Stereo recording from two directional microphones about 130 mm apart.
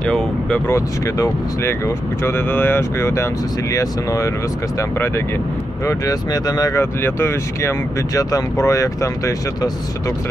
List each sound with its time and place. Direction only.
0.0 s speech: 10° left (ahead or behind)
0.7 s speech: 25° left (ahead or behind)
5.9 s speech: 30° left (ahead or behind)